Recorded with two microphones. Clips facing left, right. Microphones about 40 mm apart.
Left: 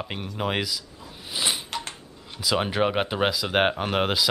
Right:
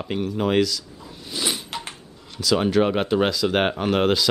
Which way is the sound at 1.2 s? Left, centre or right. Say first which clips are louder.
Right 1 dB; centre.